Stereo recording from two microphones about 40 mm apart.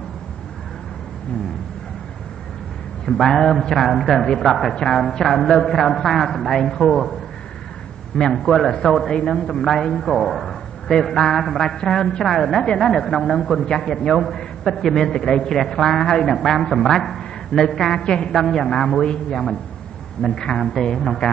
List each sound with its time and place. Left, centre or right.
3.1 s a man's voice: centre
4.7 s a man's voice: centre
5.1 s a man's voice: centre
8.2 s a man's voice: centre
14.6 s a man's voice: centre; by 18.3 s left
18.3 s a man's voice: centre